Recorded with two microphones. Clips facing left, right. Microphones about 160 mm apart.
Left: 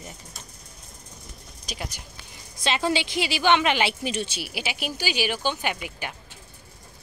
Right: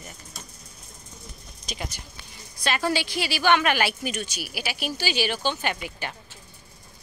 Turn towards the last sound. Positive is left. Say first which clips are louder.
# even
turn(degrees=10)  # may be behind; listen again after turning